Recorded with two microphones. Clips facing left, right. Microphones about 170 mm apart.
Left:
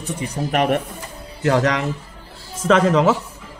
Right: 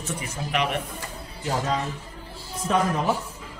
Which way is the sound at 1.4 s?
80° left.